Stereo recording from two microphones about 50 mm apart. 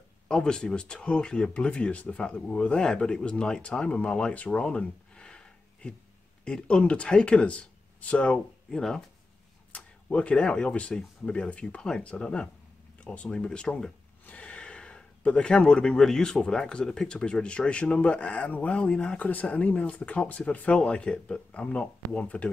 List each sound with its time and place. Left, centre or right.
0.3 s speech: centre
4.5 s a sound: centre
6.4 s speech: centre
8.6 s speech: centre
10.0 s speech: left
13.3 s speech: centre